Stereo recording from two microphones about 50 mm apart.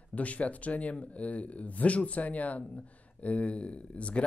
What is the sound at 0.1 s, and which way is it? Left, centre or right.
Speech, left.